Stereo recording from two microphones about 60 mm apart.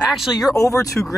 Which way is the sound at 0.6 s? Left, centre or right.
Left.